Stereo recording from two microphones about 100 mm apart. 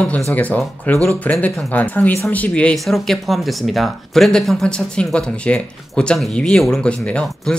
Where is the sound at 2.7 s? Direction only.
Centre (ahead or behind).